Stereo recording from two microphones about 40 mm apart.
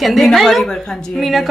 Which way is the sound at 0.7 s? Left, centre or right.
Centre.